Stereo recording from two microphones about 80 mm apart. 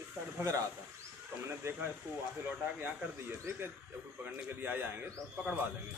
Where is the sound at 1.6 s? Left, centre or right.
Right.